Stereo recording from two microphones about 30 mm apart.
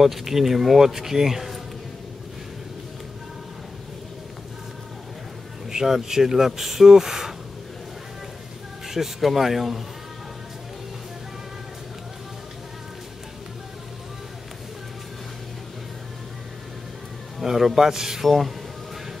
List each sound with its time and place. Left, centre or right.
0.0 s speech: centre
5.7 s speech: centre
8.8 s speech: centre
17.4 s a man's voice: centre
18.2 s speech: centre